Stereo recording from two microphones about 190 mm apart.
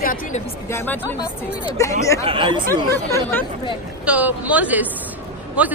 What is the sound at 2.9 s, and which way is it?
Speech, 15° left (ahead or behind).